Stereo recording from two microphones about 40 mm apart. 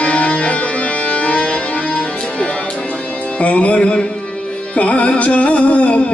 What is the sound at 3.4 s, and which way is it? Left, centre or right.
Music, left.